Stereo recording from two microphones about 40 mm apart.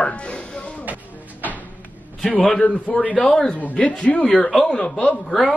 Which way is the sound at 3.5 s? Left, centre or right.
Left.